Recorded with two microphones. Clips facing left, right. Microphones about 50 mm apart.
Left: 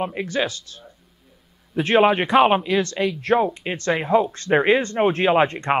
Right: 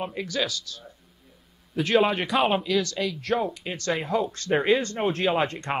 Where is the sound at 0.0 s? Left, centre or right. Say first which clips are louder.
Left 5 dB; left.